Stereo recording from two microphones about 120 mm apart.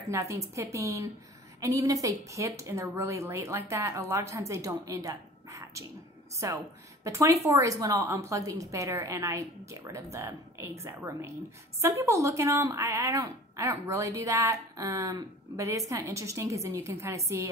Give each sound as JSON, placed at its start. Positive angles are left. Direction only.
{"t": 0.1, "sound": "a woman's voice", "side_deg": -25}